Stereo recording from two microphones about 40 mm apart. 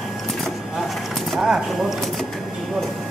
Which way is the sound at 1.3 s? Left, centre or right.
Centre.